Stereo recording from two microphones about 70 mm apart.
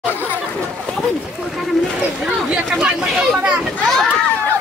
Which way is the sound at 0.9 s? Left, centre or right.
Centre.